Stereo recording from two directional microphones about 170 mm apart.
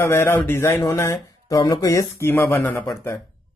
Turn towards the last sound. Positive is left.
turn(degrees=20)  # may be behind; listen again after turning